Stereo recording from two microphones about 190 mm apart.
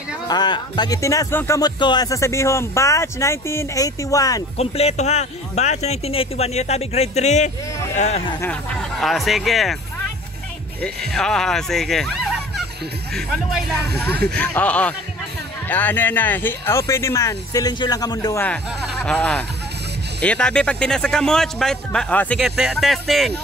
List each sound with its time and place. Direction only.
0.3 s speech: 20° left (ahead or behind)
4.6 s speech: 35° left (ahead or behind)
8.4 s speech: 5° left (ahead or behind)
11.1 s speech: 5° left (ahead or behind)
14.0 s speech: 55° right (ahead or behind)
14.3 s speech: 10° left (ahead or behind)
18.4 s speech: 5° left (ahead or behind)
22.4 s speech: 5° right (ahead or behind)